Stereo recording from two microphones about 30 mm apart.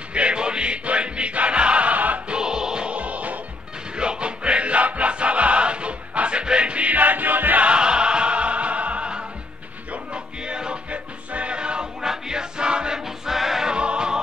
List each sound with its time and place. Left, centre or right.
0.1 s music: right
2.0 s music: right
2.2 s music: right
2.9 s music: right
3.9 s music: right
6.9 s music: right
7.6 s music: right
10.9 s music: right
11.5 s music: right
12.0 s music: right
13.2 s music: centre
13.7 s music: right